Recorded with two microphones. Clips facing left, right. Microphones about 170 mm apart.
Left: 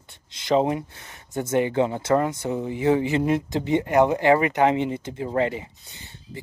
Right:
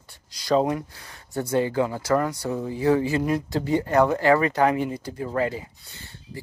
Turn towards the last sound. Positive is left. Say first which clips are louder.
# even
turn(degrees=20)  # may be behind; listen again after turning